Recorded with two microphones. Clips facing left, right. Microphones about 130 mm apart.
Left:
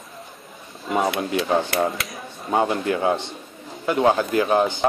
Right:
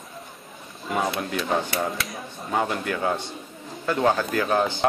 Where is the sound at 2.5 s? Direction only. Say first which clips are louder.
Left 5 dB; 25° left (ahead or behind).